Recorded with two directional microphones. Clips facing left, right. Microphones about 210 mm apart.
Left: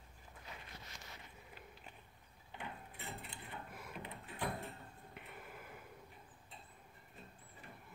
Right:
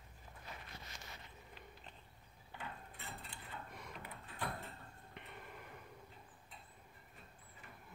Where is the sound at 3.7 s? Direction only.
5° left (ahead or behind).